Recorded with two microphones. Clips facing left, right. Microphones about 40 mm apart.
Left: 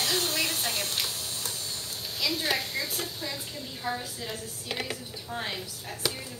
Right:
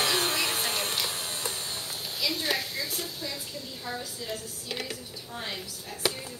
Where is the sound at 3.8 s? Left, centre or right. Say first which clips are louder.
Left 3 dB; centre.